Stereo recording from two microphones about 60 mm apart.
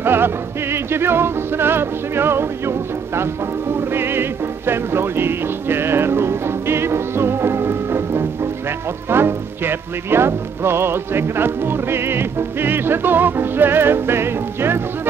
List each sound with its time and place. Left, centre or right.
0.0 s music: right